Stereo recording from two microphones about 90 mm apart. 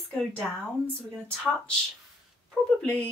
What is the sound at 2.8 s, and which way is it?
Speech, 15° left (ahead or behind).